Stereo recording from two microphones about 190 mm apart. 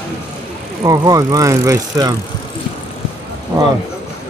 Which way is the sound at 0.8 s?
20° right (ahead or behind).